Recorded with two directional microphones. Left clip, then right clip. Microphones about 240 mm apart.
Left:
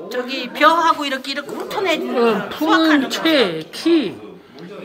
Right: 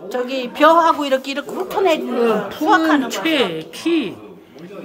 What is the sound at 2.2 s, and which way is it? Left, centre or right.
Speech, centre.